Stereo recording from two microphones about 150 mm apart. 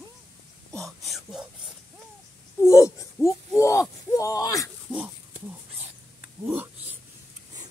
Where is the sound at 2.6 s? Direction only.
20° left (ahead or behind).